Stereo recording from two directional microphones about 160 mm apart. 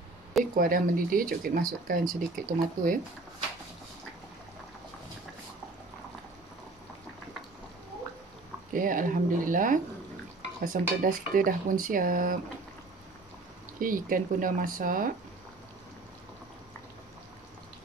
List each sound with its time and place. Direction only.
0.6 s speech: 60° right (ahead or behind)
8.7 s speech: 55° right (ahead or behind)
13.7 s speech: 60° right (ahead or behind)